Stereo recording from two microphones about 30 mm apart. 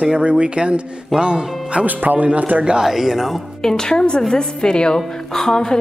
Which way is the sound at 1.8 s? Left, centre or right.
Right.